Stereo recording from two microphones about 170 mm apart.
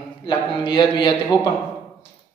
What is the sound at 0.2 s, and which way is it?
A man's voice, 25° left (ahead or behind).